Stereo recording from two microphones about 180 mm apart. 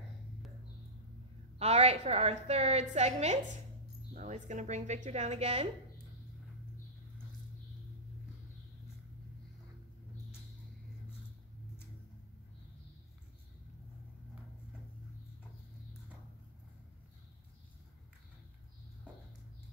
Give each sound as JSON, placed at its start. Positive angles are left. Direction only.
{"t": 1.6, "sound": "a woman's voice", "side_deg": -35}